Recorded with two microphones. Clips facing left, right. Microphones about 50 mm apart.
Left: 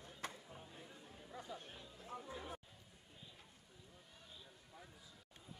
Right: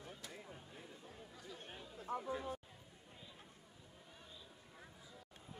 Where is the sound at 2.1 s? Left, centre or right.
Right.